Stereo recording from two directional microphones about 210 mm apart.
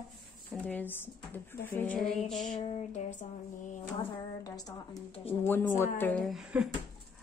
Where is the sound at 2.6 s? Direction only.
30° left (ahead or behind).